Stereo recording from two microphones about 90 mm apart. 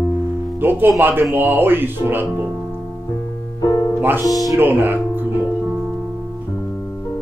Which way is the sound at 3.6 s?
45° left (ahead or behind).